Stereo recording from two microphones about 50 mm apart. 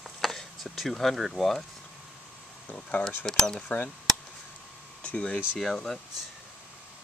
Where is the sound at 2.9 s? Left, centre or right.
Left.